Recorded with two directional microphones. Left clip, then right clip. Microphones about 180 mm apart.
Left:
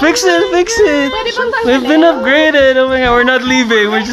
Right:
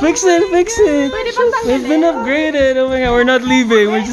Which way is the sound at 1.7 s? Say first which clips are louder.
Left 4 dB; centre (ahead or behind).